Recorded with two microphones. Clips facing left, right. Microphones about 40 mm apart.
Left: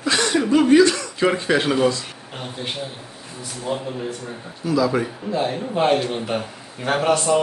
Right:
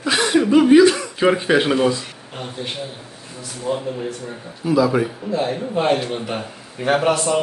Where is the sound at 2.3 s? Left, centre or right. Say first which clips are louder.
Right 1 dB; centre.